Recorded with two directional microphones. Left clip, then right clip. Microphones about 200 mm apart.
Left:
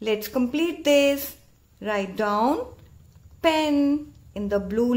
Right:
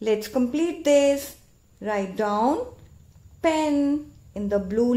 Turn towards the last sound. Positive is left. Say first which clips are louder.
# right 1 dB
turn(degrees=-10)  # may be behind; listen again after turning